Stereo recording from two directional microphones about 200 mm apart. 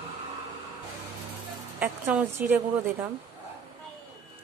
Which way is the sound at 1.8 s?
10° right (ahead or behind).